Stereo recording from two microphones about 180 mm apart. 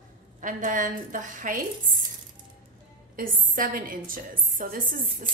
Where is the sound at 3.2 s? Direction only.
50° right (ahead or behind).